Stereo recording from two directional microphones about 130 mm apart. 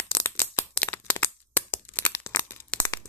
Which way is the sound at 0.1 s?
15° left (ahead or behind).